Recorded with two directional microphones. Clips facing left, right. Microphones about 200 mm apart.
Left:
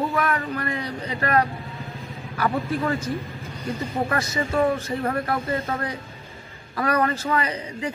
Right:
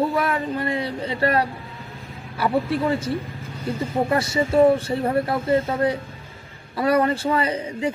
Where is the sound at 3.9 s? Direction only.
30° right (ahead or behind).